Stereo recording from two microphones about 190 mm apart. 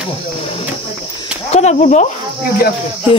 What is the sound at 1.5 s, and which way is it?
Speech, 35° left (ahead or behind).